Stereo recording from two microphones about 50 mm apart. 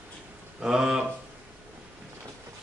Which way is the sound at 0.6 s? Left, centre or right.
Centre.